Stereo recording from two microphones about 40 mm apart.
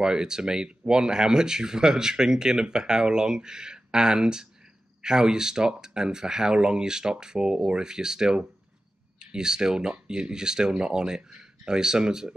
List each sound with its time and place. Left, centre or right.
0.0 s speech: centre